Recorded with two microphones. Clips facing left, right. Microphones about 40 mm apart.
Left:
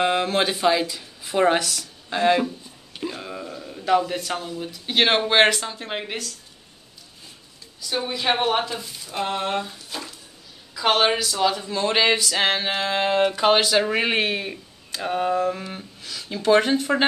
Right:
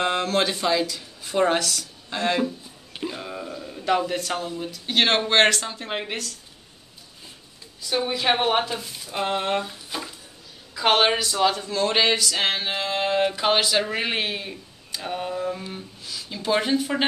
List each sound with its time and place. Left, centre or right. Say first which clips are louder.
0.0 s speech: left 2 dB; centre
1.6 s speech: right 1 dB; left
2.0 s speech: left 4 dB; centre
3.0 s a sound: even; centre
4.2 s speech: right 1 dB; centre
7.9 s speech: right 1 dB; centre
11.5 s speech: even; centre
12.2 s speech: left 2 dB; left
12.7 s music: left 2 dB; left
13.2 s speech: left 4 dB; centre; by 17.0 s left